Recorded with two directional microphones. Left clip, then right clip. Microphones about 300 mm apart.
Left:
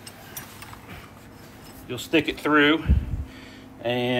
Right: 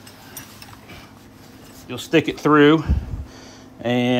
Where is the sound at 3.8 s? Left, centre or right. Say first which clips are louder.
Right 4 dB; right.